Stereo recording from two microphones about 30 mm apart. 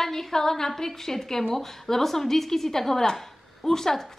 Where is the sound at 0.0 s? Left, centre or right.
Centre.